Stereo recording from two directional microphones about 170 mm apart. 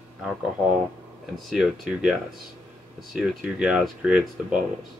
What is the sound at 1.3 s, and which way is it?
Speech, centre (ahead or behind).